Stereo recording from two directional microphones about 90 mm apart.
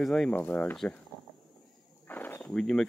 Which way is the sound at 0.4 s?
20° left (ahead or behind).